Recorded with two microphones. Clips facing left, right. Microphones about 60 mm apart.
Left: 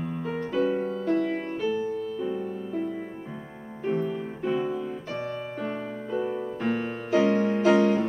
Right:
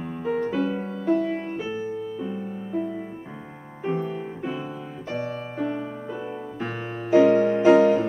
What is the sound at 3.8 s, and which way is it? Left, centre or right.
Music, centre.